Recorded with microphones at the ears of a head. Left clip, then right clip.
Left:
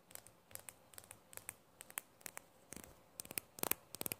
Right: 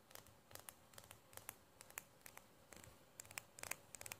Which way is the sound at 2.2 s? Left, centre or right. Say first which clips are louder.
Left 7 dB; left.